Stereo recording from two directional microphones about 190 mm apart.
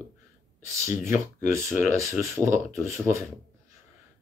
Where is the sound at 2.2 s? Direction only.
15° right (ahead or behind).